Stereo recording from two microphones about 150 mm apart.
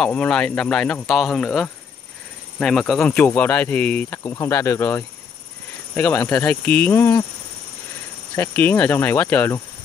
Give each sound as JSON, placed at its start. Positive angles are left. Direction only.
{"t": 0.0, "sound": "speech", "side_deg": 5}
{"t": 4.2, "sound": "speech", "side_deg": 20}
{"t": 8.4, "sound": "speech", "side_deg": 10}